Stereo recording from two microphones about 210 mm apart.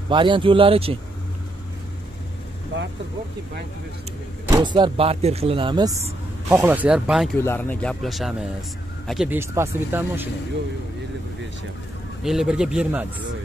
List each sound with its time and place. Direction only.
0.1 s speech: 25° right (ahead or behind)
2.7 s vehicle: 60° right (ahead or behind)
4.5 s speech: 20° right (ahead or behind); by 7.2 s 5° right (ahead or behind)
7.3 s speech: 10° left (ahead or behind); by 10.2 s 10° right (ahead or behind)
12.2 s speech: centre (ahead or behind)